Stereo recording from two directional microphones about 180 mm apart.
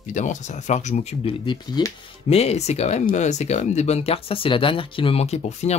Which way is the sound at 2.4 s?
35° left (ahead or behind).